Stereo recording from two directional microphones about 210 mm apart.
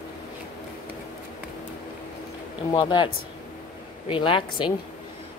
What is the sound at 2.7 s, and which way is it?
Speech, 25° left (ahead or behind).